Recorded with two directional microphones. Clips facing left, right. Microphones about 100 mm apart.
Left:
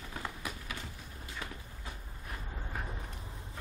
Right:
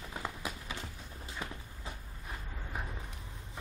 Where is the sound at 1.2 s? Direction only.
25° right (ahead or behind).